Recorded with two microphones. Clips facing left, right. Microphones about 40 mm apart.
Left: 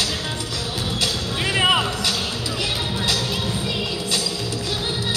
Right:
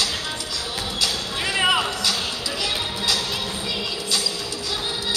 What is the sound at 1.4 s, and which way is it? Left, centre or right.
Music, centre.